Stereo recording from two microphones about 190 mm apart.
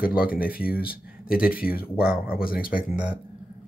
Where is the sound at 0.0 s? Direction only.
50° left (ahead or behind).